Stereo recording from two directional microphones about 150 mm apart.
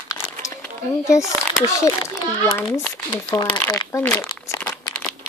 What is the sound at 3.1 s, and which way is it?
Speech, 25° left (ahead or behind).